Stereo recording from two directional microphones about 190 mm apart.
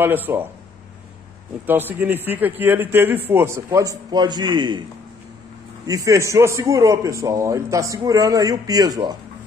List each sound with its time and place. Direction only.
0.0 s a man's voice: 10° right (ahead or behind)
1.7 s a man's voice: 10° right (ahead or behind)
5.9 s a man's voice: 15° right (ahead or behind)